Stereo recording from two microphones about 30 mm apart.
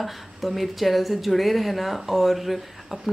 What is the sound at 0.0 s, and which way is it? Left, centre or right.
Speech, centre.